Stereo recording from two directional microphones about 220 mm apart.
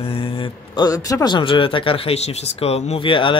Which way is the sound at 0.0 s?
25° left (ahead or behind).